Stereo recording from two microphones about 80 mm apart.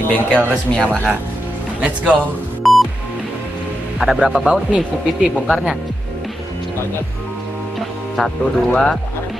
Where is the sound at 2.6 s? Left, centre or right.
Centre.